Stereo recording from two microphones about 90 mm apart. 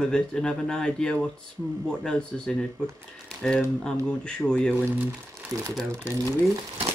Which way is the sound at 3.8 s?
10° left (ahead or behind).